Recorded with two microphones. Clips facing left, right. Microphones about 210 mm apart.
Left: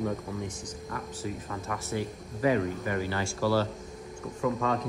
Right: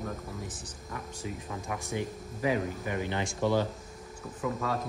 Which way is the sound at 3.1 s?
20° right (ahead or behind).